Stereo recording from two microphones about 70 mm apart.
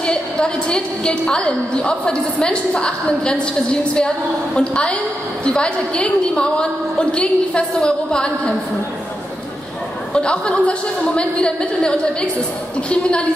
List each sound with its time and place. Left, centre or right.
0.0 s a woman's voice: centre
4.6 s a woman's voice: centre
10.1 s a woman's voice: centre